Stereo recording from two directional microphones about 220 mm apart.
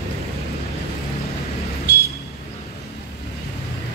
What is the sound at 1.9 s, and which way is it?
Vehicle, 50° left (ahead or behind).